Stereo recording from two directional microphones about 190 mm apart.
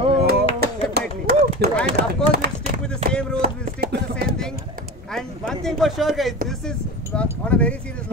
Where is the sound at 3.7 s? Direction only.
55° right (ahead or behind).